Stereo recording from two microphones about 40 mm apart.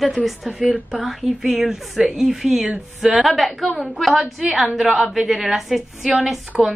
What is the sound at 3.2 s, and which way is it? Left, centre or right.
A woman's voice, centre.